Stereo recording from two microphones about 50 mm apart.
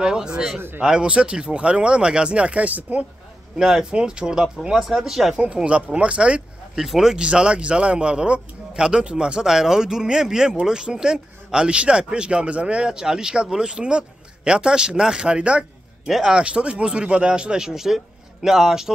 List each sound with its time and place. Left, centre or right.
0.0 s a man's voice: centre
3.5 s a man's voice: centre
6.8 s a man's voice: centre
7.2 s a man's voice: centre
16.1 s a man's voice: centre
16.3 s a man's voice: centre